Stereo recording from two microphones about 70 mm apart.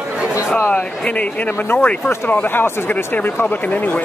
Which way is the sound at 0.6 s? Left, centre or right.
Left.